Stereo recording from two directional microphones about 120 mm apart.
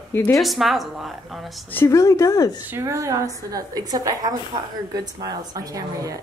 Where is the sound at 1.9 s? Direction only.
25° left (ahead or behind).